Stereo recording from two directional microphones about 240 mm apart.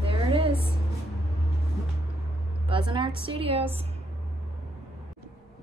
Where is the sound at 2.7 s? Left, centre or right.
Right.